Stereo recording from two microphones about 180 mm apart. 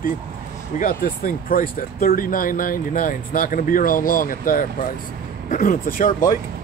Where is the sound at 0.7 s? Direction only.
50° left (ahead or behind).